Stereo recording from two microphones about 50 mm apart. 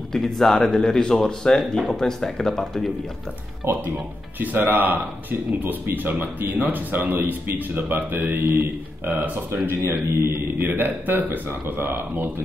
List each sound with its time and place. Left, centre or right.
0.1 s speech: centre
3.6 s speech: right
4.4 s a man's voice: right